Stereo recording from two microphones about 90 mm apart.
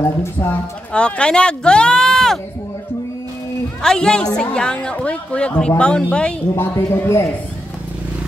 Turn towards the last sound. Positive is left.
turn(degrees=30)  # may be behind; listen again after turning